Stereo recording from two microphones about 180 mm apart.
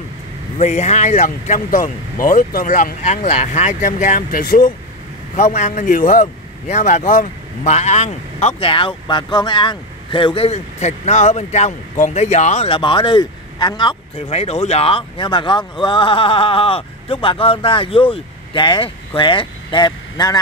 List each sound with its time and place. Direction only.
0.6 s speech: 40° left (ahead or behind)
5.3 s speech: 40° left (ahead or behind); by 20.3 s 25° left (ahead or behind)